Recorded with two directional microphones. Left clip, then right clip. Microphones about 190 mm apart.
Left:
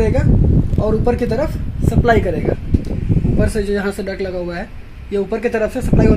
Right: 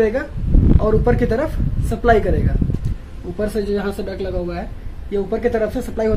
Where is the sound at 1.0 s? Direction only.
15° left (ahead or behind).